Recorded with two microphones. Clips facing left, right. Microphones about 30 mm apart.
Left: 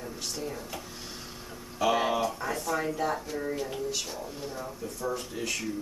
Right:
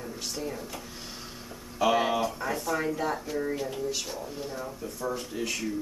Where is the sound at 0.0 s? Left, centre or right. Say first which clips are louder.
Right 1 dB; centre.